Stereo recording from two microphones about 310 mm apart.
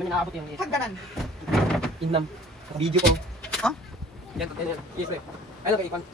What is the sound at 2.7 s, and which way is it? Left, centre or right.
Speech, centre.